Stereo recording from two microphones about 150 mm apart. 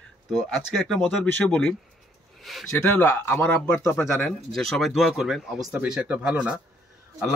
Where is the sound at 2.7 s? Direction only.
15° left (ahead or behind).